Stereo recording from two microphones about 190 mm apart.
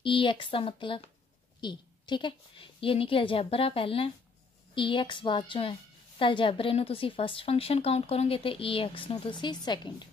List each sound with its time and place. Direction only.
0.0 s a woman's voice: 25° left (ahead or behind)